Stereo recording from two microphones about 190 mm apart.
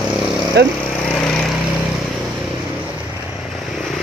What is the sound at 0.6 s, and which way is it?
Speech, 60° right (ahead or behind).